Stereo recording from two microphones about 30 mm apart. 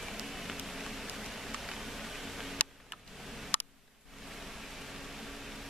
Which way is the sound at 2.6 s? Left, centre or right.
Left.